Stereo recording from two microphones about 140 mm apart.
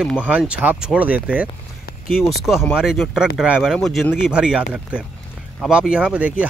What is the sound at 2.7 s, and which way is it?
Speech, 5° right (ahead or behind).